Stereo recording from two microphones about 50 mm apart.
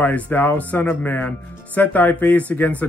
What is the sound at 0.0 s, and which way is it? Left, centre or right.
Speech, left.